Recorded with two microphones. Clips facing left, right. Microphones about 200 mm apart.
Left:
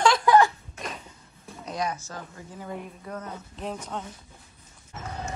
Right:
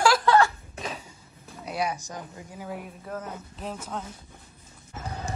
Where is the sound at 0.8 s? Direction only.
Centre (ahead or behind).